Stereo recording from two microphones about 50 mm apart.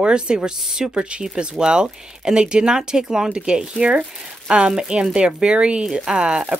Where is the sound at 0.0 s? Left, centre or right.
Centre.